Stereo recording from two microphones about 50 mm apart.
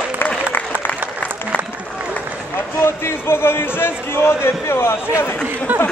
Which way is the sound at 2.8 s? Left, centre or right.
Left.